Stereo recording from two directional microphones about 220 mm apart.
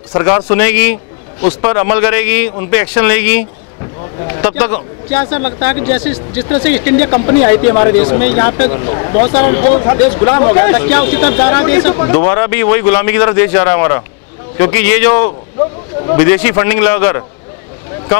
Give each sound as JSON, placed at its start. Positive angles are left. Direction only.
{"t": 0.1, "sound": "speech", "side_deg": 20}
{"t": 8.6, "sound": "speech", "side_deg": 30}
{"t": 9.3, "sound": "speech", "side_deg": 15}
{"t": 9.6, "sound": "speech", "side_deg": 35}
{"t": 9.8, "sound": "speech", "side_deg": 20}